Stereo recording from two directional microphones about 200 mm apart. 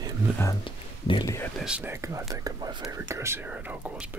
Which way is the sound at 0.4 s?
20° left (ahead or behind).